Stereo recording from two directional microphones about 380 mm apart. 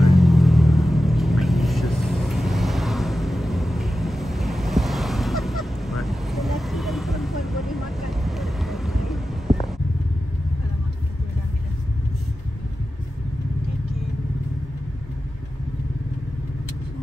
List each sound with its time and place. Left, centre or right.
0.0 s vehicle: centre